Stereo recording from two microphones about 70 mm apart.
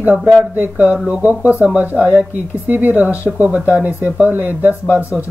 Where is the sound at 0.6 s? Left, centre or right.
Right.